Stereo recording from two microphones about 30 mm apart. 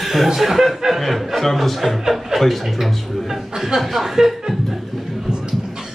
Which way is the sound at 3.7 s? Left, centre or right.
Centre.